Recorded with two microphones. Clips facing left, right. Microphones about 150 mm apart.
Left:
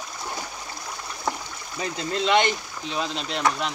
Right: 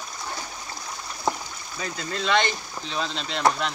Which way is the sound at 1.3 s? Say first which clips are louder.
Right 2 dB; 25° right (ahead or behind).